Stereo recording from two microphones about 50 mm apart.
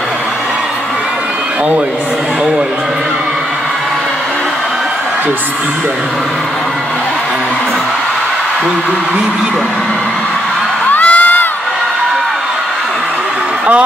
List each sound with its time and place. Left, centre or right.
10.9 s crowd: left